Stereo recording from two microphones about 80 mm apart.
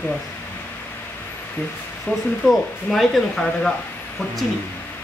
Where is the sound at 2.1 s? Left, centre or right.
Centre.